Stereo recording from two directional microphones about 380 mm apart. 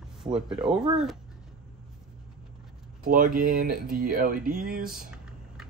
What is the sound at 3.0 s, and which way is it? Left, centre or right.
Speech, right.